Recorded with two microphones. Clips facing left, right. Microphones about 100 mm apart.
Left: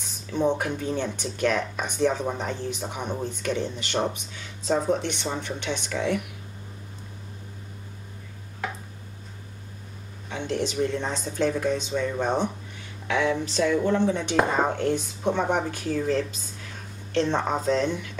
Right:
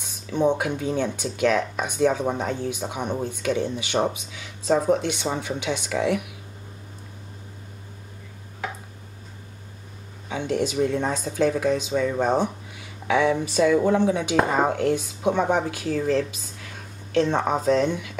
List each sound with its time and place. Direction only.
0.3 s speech: 15° right (ahead or behind)
10.3 s speech: 10° right (ahead or behind)